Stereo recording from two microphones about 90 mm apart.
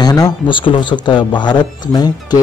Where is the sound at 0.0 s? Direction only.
45° left (ahead or behind).